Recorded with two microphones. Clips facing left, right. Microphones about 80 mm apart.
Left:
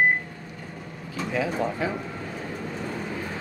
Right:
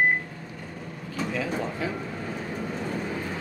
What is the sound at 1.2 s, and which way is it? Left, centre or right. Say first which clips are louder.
Speech: left 3 dB; centre.